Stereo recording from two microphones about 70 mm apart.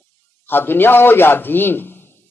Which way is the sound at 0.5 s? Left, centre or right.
Left.